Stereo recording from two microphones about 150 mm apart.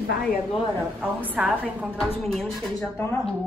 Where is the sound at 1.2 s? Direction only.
10° right (ahead or behind).